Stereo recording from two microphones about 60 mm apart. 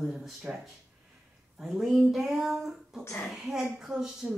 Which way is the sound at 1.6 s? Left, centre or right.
Centre.